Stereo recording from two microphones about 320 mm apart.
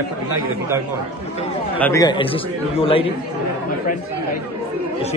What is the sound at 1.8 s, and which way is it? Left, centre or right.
A man's voice, centre.